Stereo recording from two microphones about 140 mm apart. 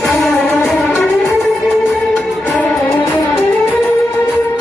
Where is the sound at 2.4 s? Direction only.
5° left (ahead or behind).